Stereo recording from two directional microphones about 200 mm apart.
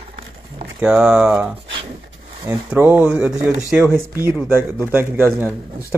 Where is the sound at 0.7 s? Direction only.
5° right (ahead or behind).